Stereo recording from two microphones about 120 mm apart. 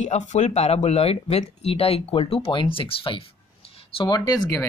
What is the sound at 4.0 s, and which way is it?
Speech, 30° left (ahead or behind).